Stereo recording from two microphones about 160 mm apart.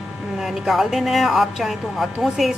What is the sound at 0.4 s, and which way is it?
Speech, centre (ahead or behind).